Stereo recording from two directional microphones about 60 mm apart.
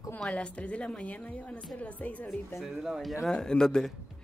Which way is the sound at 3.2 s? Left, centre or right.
Centre.